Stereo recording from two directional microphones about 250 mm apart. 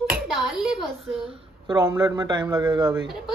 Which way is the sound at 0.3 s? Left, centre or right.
Centre.